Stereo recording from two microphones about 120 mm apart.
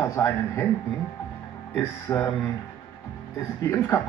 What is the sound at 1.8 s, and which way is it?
Speech, 20° left (ahead or behind).